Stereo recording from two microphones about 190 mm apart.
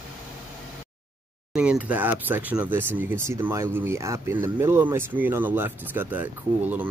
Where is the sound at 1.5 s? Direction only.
5° right (ahead or behind).